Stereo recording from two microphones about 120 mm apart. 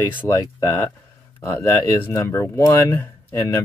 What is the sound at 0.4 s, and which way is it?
Speech, 25° left (ahead or behind).